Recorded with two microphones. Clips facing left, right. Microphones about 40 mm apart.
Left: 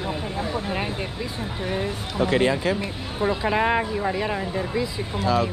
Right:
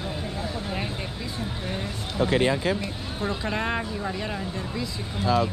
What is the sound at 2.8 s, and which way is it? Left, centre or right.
Speech, centre.